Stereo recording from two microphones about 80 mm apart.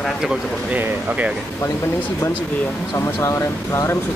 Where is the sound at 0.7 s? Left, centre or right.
Centre.